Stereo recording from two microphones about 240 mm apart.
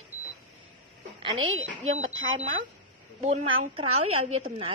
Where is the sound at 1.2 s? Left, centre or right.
Right.